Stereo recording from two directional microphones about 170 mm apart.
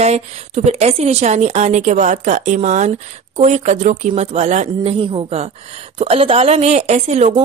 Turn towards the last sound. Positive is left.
turn(degrees=-40)  # may be behind; listen again after turning